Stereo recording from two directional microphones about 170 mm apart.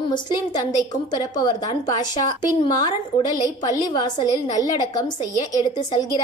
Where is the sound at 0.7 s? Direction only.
25° left (ahead or behind).